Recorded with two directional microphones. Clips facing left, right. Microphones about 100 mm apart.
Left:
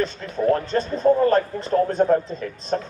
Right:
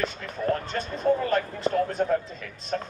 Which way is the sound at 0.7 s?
35° left (ahead or behind).